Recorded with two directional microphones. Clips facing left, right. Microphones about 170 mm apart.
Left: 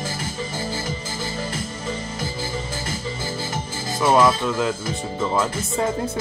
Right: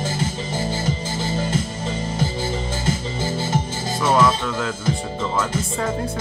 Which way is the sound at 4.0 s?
20° left (ahead or behind).